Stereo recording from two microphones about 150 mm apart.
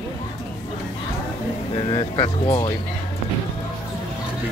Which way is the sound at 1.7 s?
30° left (ahead or behind).